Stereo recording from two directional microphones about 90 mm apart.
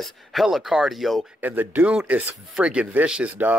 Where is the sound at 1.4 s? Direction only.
20° right (ahead or behind).